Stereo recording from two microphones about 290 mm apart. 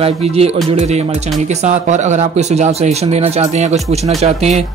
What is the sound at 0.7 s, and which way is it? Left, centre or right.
Speech, right.